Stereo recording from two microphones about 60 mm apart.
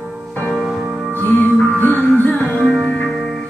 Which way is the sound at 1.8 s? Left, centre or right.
Left.